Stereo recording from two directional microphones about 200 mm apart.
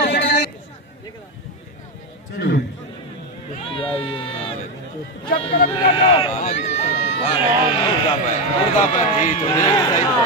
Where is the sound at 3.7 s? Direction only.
25° left (ahead or behind).